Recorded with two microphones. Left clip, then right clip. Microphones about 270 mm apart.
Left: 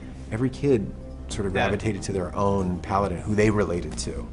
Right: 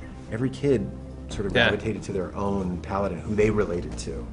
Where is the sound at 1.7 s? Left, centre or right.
Left.